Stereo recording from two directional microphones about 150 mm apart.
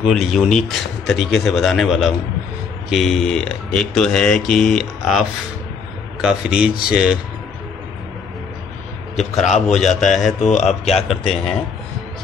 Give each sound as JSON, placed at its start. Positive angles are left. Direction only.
{"t": 0.0, "sound": "speech", "side_deg": 0}
{"t": 6.2, "sound": "speech", "side_deg": -5}
{"t": 9.1, "sound": "a man's voice", "side_deg": 45}
{"t": 9.9, "sound": "speech", "side_deg": 0}
{"t": 10.4, "sound": "a man's voice", "side_deg": 50}
{"t": 11.1, "sound": "speech", "side_deg": 0}